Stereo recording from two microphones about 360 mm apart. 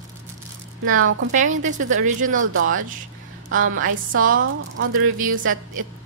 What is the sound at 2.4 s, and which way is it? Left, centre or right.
A woman's voice, right.